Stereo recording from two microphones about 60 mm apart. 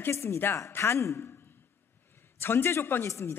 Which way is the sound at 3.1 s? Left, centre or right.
Left.